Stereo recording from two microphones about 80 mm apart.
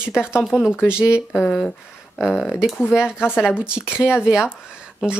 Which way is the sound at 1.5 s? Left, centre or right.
Centre.